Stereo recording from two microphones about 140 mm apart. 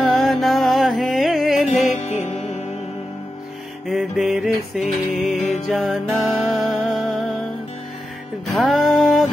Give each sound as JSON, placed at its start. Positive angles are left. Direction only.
{"t": 0.0, "sound": "music", "side_deg": 0}
{"t": 2.0, "sound": "music", "side_deg": 55}
{"t": 3.8, "sound": "music", "side_deg": 0}
{"t": 8.5, "sound": "music", "side_deg": 0}